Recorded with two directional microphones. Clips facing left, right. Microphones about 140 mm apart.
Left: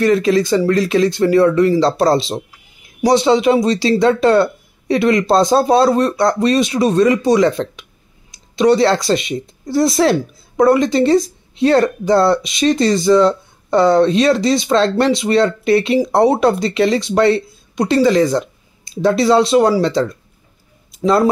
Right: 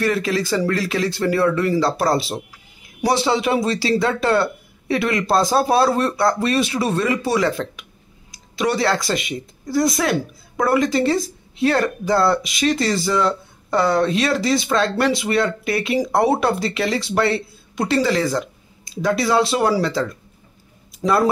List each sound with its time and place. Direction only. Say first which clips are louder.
0.0 s speech: left 7 dB; 20° left (ahead or behind)